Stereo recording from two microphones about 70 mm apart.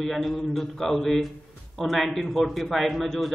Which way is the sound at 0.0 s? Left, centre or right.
Centre.